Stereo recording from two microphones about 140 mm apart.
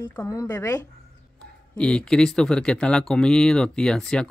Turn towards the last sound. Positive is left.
turn(degrees=5)  # may be behind; listen again after turning